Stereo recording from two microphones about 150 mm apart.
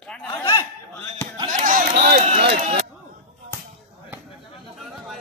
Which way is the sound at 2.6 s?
45° right (ahead or behind).